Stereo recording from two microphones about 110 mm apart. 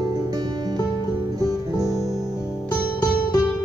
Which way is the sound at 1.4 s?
35° right (ahead or behind).